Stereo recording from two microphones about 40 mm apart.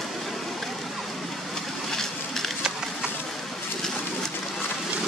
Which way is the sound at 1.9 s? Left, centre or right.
Centre.